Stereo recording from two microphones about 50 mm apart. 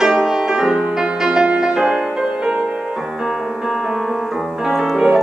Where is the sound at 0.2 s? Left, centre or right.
Centre.